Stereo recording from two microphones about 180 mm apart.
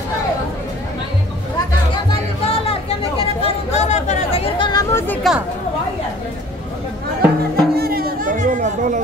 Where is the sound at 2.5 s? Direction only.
35° left (ahead or behind).